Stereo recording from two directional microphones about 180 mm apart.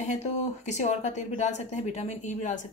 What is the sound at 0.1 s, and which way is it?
Speech, 40° left (ahead or behind).